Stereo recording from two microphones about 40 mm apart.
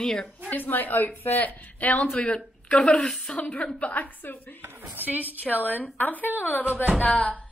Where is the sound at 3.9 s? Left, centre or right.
Left.